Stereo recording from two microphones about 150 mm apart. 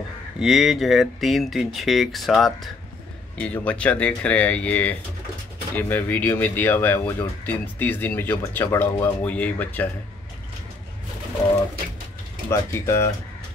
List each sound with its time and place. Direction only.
0.4 s speech: centre (ahead or behind)
12.4 s speech: 20° left (ahead or behind)